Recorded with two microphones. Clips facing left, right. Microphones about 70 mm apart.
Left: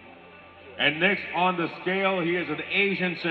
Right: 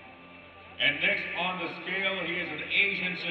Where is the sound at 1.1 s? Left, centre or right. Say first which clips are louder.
Left 6 dB; left.